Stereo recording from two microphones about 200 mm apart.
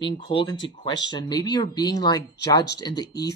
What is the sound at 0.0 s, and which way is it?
Speech, 25° left (ahead or behind).